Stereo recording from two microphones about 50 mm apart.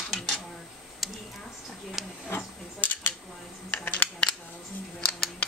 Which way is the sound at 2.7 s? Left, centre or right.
Left.